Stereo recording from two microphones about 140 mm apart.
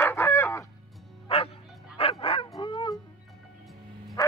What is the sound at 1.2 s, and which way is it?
Bow-wow, 45° left (ahead or behind).